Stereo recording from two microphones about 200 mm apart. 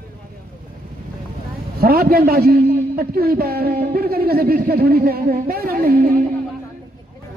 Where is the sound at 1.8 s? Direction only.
50° right (ahead or behind).